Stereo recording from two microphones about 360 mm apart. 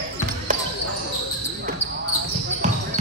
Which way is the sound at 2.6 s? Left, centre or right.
Centre.